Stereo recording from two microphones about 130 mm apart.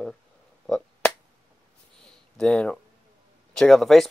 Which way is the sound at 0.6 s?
5° left (ahead or behind).